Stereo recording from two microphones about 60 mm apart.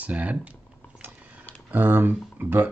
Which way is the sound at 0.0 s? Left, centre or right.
Right.